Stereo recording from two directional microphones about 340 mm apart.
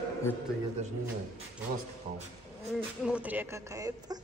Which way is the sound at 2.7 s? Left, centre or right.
Centre.